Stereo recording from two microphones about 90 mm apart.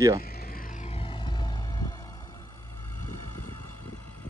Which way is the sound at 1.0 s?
65° left (ahead or behind).